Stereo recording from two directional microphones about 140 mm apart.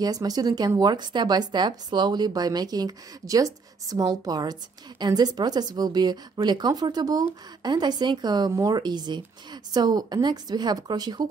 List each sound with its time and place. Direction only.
0.0 s speech: 25° right (ahead or behind)